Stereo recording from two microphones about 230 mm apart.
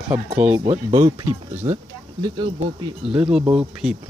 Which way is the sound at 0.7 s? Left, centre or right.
Right.